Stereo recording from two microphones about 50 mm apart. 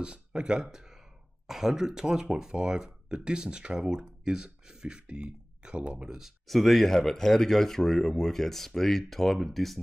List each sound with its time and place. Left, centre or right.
0.0 s speech: centre
6.4 s speech: centre